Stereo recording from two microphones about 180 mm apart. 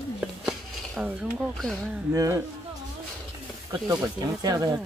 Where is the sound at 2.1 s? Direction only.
20° right (ahead or behind).